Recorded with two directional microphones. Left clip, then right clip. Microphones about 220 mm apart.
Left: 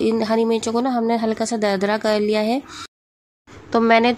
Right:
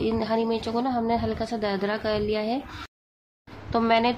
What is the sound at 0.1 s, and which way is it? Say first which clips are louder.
A woman's voice: left 6 dB; 25° left (ahead or behind).